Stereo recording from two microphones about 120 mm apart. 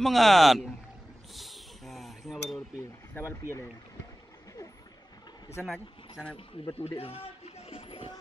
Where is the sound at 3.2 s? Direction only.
20° left (ahead or behind).